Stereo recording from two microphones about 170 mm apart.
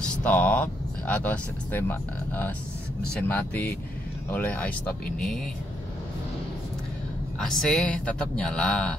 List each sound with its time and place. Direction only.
0.0 s speech: 10° left (ahead or behind)
7.3 s speech: 5° left (ahead or behind)